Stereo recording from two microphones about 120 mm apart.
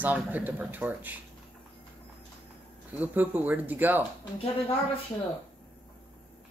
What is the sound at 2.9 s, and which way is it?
Speech, 15° right (ahead or behind).